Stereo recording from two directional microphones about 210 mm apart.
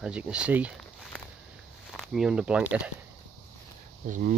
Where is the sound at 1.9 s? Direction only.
Centre (ahead or behind).